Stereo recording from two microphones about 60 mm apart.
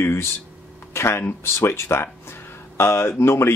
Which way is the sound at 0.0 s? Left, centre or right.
Left.